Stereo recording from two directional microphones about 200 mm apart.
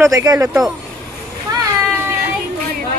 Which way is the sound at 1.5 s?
20° right (ahead or behind).